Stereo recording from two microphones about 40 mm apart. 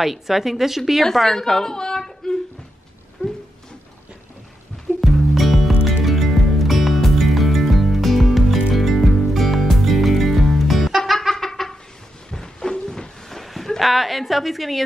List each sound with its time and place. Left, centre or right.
0.0 s a woman's voice: centre
1.0 s speech: centre
3.2 s a sound: centre
5.0 s music: centre
11.1 s a sound: centre
13.3 s speech: centre